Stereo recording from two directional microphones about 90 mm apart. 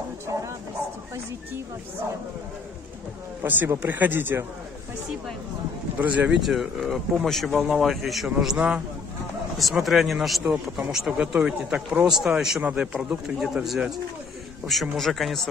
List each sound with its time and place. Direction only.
0.3 s a sound: 35° right (ahead or behind)
3.4 s speech: 20° right (ahead or behind)
5.9 s a man's voice: 15° right (ahead or behind)
6.4 s a man's voice: centre (ahead or behind)
9.6 s a man's voice: centre (ahead or behind)